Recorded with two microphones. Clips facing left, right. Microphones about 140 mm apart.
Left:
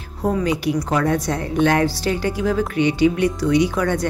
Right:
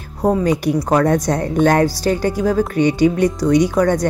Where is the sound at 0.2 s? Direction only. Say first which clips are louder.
Right 4 dB; 40° right (ahead or behind).